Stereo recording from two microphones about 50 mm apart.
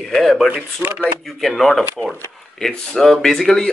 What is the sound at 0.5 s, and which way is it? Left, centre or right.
Speech, right.